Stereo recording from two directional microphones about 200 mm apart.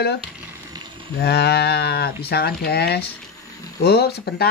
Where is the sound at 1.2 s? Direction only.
55° left (ahead or behind).